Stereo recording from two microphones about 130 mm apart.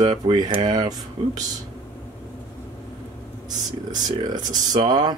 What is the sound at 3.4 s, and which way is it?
Speech, 30° right (ahead or behind).